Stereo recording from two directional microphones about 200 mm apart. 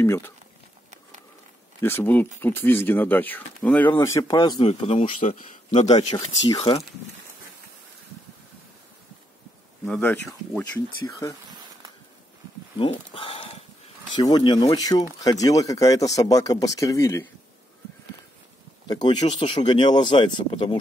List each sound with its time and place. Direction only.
0.0 s speech: 10° left (ahead or behind)
1.8 s speech: 10° left (ahead or behind)
4.6 s speech: 30° left (ahead or behind)
6.1 s speech: 25° left (ahead or behind)
9.8 s speech: 10° left (ahead or behind)
12.7 s speech: 25° left (ahead or behind)
18.9 s speech: 20° left (ahead or behind)